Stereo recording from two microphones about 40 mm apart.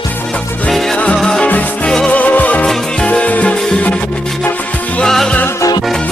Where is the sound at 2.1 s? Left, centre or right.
Left.